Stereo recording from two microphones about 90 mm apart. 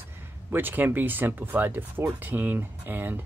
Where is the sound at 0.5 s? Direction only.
20° right (ahead or behind).